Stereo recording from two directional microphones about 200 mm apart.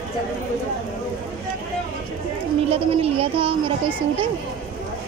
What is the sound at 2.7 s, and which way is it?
Speech, 30° right (ahead or behind).